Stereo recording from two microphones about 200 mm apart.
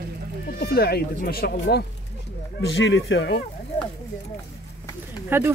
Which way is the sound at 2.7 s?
65° left (ahead or behind).